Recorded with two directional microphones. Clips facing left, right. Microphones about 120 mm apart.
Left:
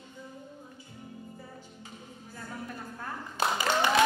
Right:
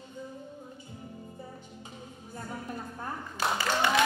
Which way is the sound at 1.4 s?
20° right (ahead or behind).